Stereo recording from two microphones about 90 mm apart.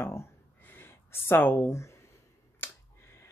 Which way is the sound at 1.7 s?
30° left (ahead or behind).